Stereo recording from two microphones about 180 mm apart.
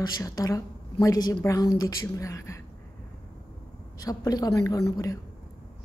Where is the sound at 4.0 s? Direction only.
20° left (ahead or behind).